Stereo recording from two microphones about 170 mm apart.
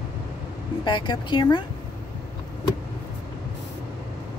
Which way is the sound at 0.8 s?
25° left (ahead or behind).